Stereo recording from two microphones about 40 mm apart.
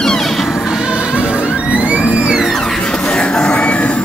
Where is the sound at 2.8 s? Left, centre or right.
Left.